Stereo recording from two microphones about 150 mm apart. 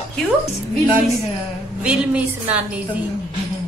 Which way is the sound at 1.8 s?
10° right (ahead or behind).